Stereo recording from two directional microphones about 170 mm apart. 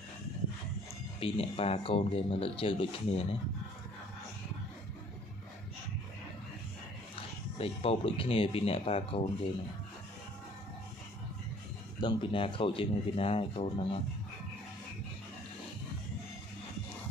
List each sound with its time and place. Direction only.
1.2 s speech: 35° left (ahead or behind)
7.5 s speech: 35° left (ahead or behind)
12.0 s speech: 30° left (ahead or behind)